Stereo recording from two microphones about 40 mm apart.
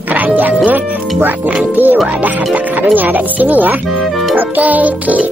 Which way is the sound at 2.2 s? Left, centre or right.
Right.